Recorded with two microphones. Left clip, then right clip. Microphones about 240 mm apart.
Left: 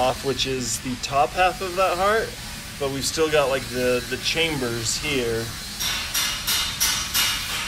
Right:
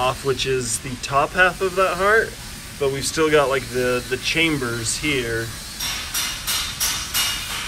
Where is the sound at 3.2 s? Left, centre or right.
Right.